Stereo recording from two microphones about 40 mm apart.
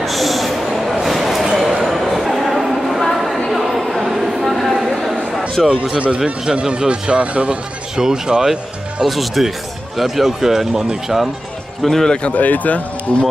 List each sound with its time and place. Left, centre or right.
0.0 s a sound: centre
5.6 s speech: centre
5.9 s speech: right
7.9 s speech: centre
9.0 s speech: centre
11.8 s speech: centre
12.1 s speech: left
12.4 s speech: left
13.1 s speech: left